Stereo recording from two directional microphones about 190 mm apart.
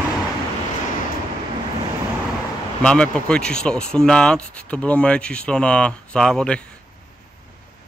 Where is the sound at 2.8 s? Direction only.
5° left (ahead or behind).